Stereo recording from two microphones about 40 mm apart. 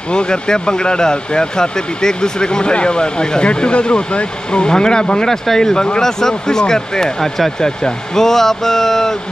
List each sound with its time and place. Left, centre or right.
0.1 s speech: left